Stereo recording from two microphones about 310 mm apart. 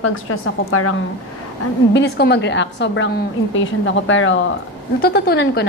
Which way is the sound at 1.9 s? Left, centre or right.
Left.